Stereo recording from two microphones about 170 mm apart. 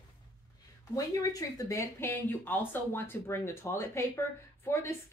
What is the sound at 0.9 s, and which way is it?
Speech, 20° left (ahead or behind).